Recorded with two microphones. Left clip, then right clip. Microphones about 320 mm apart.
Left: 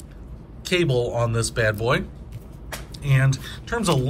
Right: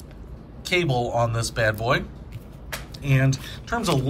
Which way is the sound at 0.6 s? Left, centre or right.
Centre.